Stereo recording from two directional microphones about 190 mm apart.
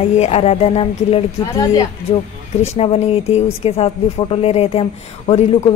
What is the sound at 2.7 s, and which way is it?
Speech, 35° left (ahead or behind).